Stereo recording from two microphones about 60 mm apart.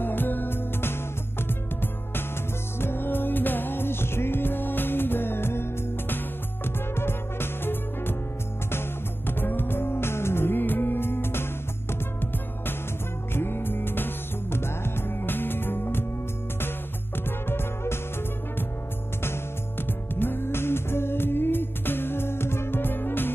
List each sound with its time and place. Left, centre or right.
0.0 s music: left
17.5 s music: left
19.9 s music: left